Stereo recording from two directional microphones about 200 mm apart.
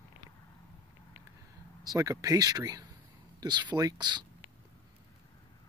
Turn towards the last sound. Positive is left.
turn(degrees=-20)  # may be behind; listen again after turning